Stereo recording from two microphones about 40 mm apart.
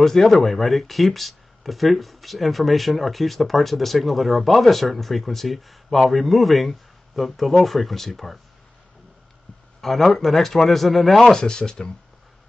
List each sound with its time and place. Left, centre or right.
0.0 s speech: centre
9.8 s speech: centre
11.4 s speech: centre